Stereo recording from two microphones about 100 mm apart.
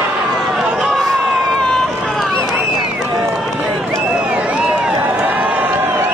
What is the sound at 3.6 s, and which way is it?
Run, centre (ahead or behind).